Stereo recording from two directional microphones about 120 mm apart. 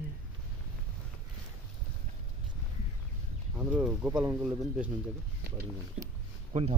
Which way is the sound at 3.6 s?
10° right (ahead or behind).